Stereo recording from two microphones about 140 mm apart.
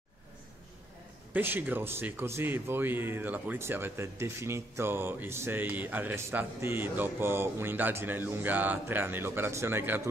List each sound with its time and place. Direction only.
1.3 s speech: 15° right (ahead or behind)